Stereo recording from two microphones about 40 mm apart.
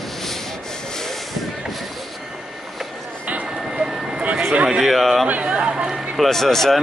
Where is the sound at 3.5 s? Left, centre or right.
Centre.